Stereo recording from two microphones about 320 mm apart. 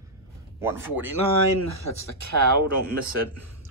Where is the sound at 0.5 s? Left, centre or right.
Centre.